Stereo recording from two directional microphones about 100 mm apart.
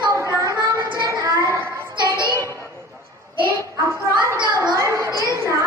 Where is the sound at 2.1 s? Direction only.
30° left (ahead or behind).